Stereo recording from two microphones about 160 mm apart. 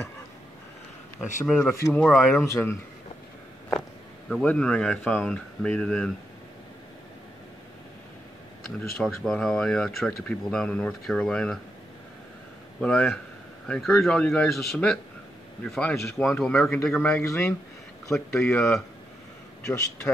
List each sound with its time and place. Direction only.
1.5 s speech: centre (ahead or behind)
4.3 s speech: 5° left (ahead or behind)
8.7 s speech: centre (ahead or behind)
12.8 s speech: 5° left (ahead or behind)
19.6 s a man's voice: 20° left (ahead or behind)